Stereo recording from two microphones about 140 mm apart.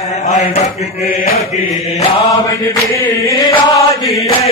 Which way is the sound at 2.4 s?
25° left (ahead or behind).